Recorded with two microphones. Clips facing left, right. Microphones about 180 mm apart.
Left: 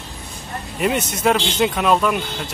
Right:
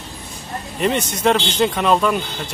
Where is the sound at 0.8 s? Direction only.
5° left (ahead or behind).